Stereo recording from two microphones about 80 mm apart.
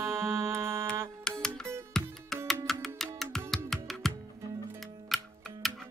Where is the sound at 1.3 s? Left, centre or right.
Centre.